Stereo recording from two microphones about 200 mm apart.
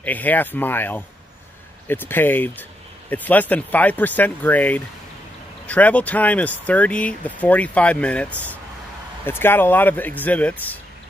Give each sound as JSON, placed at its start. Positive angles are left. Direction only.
{"t": 0.0, "sound": "speech", "side_deg": 10}